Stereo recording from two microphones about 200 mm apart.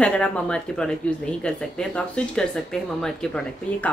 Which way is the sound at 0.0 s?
5° left (ahead or behind).